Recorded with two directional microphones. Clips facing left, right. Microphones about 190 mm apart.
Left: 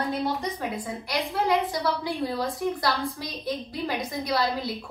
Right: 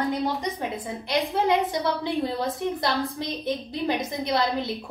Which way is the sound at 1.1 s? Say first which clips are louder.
Right 3 dB; 20° right (ahead or behind).